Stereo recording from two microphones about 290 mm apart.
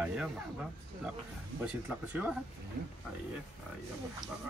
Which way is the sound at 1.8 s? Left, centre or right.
Centre.